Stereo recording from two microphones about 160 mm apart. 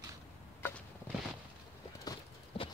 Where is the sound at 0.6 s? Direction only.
15° left (ahead or behind).